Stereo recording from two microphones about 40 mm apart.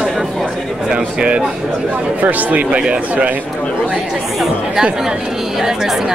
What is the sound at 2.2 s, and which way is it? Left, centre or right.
Speech, right.